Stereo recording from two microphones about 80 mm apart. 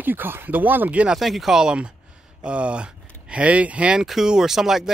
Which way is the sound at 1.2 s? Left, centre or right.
Centre.